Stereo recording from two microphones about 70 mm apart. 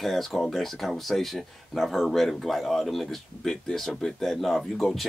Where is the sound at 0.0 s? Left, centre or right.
Centre.